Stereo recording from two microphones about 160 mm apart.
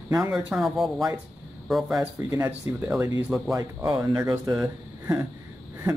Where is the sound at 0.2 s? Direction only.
5° right (ahead or behind).